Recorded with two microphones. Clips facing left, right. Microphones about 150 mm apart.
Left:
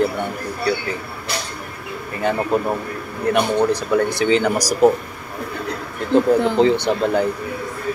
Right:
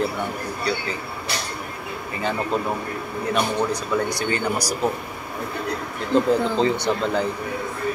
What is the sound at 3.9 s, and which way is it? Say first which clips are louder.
Speech: left 7 dB; 85° left.